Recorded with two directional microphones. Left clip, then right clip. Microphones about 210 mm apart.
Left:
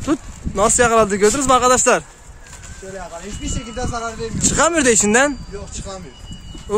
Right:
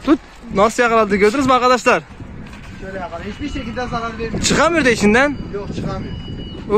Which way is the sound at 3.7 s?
25° left (ahead or behind).